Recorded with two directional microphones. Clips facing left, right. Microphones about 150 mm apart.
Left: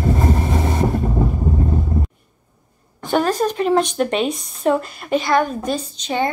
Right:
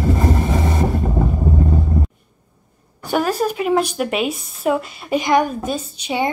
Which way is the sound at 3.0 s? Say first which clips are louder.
Left 1 dB; 10° right (ahead or behind).